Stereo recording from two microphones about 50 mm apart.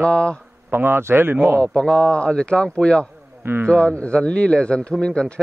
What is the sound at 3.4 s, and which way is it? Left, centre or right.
Speech, right.